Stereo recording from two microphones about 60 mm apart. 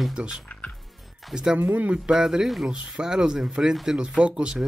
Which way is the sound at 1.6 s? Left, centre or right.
Right.